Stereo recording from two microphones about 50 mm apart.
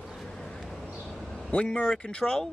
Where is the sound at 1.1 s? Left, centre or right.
Centre.